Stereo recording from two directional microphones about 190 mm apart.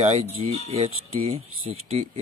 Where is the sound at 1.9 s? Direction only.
30° right (ahead or behind).